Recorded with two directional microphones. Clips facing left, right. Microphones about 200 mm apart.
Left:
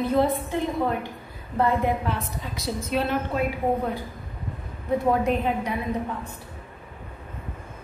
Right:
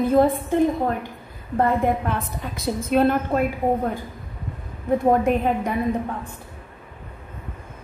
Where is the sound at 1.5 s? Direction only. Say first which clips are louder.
Right 3 dB; 50° right (ahead or behind).